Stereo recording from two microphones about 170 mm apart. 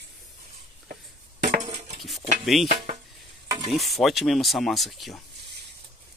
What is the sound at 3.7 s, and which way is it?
Speech, centre (ahead or behind).